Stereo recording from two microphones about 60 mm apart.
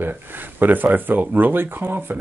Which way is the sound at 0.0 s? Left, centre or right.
Right.